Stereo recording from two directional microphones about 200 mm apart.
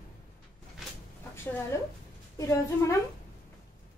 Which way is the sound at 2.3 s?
15° left (ahead or behind).